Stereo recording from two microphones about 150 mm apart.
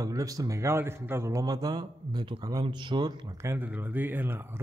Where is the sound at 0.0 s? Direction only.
20° right (ahead or behind).